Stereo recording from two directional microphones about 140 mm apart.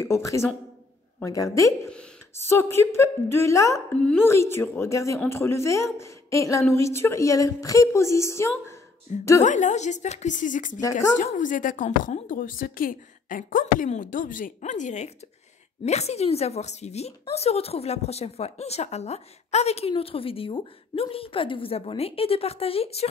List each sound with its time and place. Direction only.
0.0 s a woman's voice: 20° left (ahead or behind)
1.7 s speech: 5° left (ahead or behind)
2.4 s a woman's voice: 20° left (ahead or behind)
4.0 s a woman's voice: 10° left (ahead or behind)
9.4 s a woman's voice: 60° left (ahead or behind); by 13.8 s 75° left (ahead or behind)
13.8 s a woman's voice: 65° left (ahead or behind); by 23.0 s 45° left (ahead or behind)